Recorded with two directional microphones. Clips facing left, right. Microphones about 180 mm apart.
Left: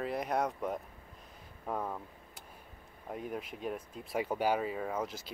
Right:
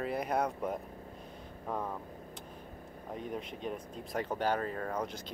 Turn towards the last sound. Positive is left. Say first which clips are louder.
# even
turn(degrees=5)  # may be behind; listen again after turning